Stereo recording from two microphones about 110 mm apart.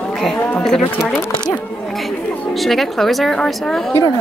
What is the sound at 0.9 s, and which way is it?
Speech, 20° left (ahead or behind).